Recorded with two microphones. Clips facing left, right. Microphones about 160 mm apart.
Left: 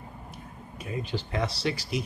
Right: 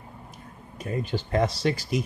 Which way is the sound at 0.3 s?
45° right (ahead or behind).